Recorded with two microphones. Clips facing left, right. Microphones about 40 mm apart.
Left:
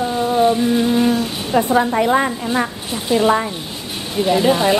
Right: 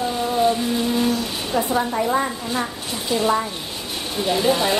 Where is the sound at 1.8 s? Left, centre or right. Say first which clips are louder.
Left 5 dB; left.